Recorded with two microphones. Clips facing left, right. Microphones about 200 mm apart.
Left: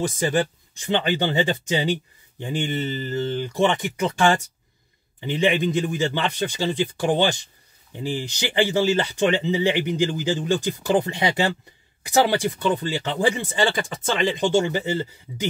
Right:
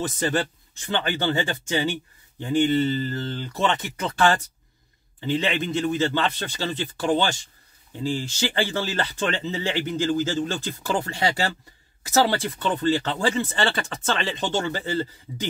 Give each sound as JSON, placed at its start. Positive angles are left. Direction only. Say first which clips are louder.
{"t": 0.2, "sound": "speech", "louder": "left 1 dB", "side_deg": 10}